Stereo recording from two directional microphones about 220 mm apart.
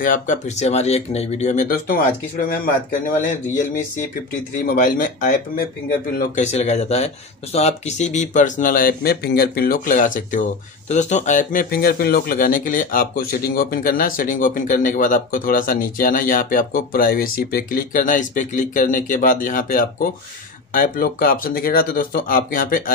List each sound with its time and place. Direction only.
0.0 s speech: 35° left (ahead or behind)
4.6 s speech: 40° left (ahead or behind)